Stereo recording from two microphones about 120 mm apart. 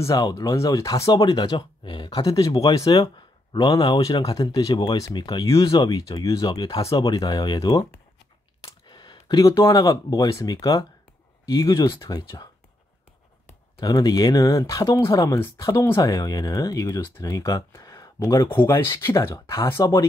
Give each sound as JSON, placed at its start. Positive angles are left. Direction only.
{"t": 0.0, "sound": "speech", "side_deg": 30}
{"t": 4.2, "sound": "speech", "side_deg": 30}
{"t": 8.8, "sound": "speech", "side_deg": 40}
{"t": 13.7, "sound": "speech", "side_deg": 30}